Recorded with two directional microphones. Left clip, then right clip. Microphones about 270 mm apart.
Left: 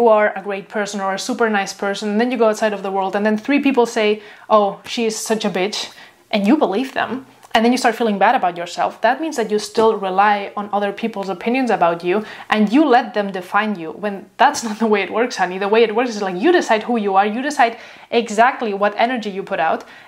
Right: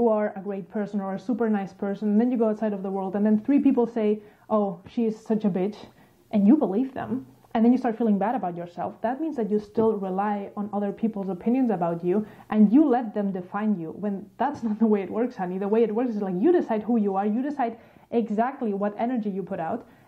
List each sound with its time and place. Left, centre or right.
0.1 s a woman's voice: centre
10.5 s speech: centre
10.8 s speech: centre